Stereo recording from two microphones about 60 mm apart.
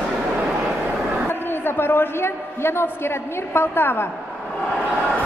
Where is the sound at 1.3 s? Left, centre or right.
Left.